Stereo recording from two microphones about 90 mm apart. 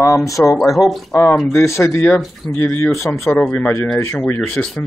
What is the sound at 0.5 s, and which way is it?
Speech, centre (ahead or behind).